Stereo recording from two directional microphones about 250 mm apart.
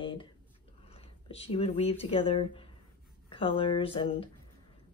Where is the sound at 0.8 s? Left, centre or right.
Left.